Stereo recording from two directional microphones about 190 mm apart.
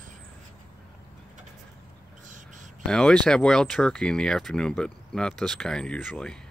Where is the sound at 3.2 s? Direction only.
5° left (ahead or behind).